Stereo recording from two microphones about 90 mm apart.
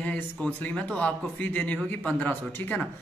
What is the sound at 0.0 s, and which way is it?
A man's voice, 15° left (ahead or behind).